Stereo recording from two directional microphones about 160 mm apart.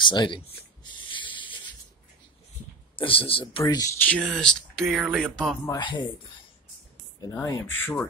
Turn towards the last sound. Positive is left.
turn(degrees=20)  # may be behind; listen again after turning